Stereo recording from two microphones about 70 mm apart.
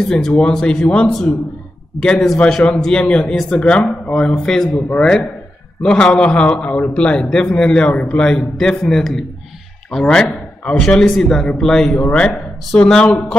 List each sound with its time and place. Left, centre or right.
0.0 s a man's voice: centre